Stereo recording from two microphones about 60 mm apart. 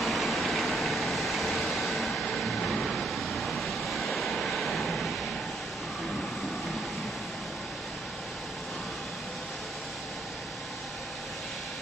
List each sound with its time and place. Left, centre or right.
0.0 s vehicle: centre